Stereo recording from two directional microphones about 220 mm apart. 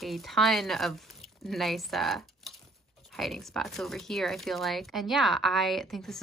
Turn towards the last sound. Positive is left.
turn(degrees=0)  # may be behind; listen again after turning